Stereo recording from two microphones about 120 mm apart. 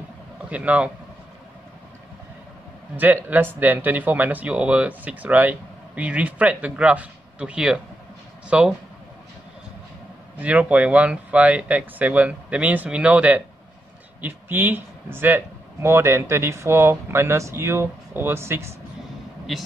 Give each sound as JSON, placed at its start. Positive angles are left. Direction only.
{"t": 0.5, "sound": "speech", "side_deg": -10}
{"t": 3.0, "sound": "speech", "side_deg": -15}
{"t": 10.4, "sound": "a man's voice", "side_deg": -10}